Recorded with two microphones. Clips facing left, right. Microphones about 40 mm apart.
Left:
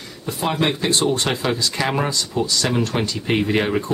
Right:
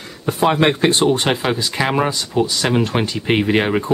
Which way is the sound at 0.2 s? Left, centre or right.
Right.